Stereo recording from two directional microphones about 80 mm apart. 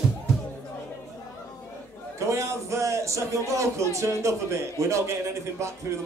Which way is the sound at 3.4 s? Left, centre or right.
Right.